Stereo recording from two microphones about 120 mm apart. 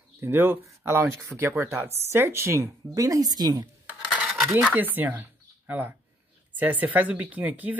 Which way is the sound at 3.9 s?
5° right (ahead or behind).